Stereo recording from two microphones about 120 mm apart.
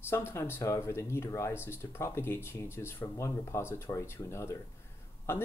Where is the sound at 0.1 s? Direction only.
20° left (ahead or behind).